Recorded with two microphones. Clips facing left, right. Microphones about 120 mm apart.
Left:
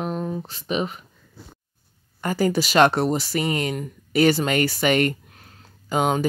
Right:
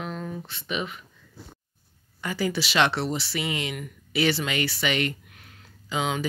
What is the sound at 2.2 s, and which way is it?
Speech, 45° left (ahead or behind).